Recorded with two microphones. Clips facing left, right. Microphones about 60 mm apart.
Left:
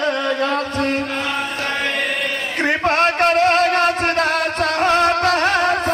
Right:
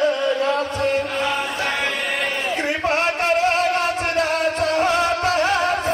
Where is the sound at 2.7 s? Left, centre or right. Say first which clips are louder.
Left 5 dB; left.